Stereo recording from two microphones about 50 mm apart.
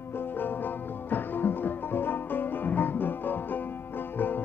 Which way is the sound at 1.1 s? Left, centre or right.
Left.